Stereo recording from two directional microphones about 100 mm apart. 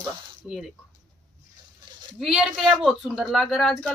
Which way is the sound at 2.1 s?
5° right (ahead or behind).